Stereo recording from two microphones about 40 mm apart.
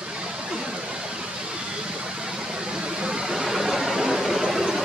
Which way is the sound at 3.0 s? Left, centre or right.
Centre.